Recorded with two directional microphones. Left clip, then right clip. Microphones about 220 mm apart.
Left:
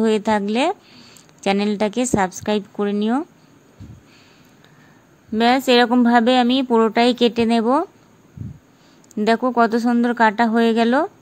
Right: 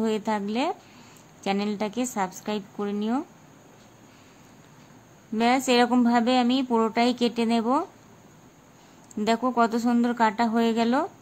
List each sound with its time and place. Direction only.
0.0 s a woman's voice: 20° left (ahead or behind)
5.3 s a woman's voice: 15° left (ahead or behind)
9.1 s a woman's voice: 20° left (ahead or behind)